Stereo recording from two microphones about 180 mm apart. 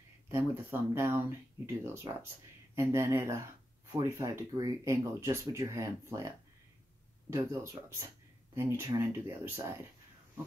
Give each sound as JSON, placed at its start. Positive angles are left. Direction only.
{"t": 0.3, "sound": "speech", "side_deg": -15}